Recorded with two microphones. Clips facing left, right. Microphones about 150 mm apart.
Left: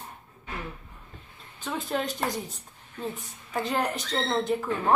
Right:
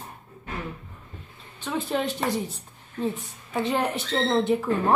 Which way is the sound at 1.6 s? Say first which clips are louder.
Right 3 dB; centre (ahead or behind).